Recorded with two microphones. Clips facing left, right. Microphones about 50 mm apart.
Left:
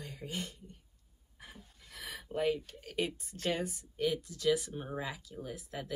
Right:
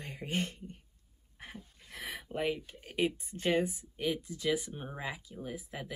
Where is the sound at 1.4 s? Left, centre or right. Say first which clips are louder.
Right 5 dB; right.